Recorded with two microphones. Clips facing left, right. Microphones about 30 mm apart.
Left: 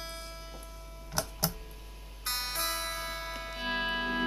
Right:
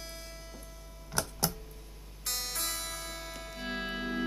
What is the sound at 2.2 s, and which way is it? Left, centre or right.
Music, centre.